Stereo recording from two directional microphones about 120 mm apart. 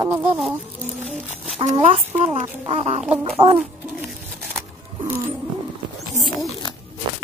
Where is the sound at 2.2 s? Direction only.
65° right (ahead or behind).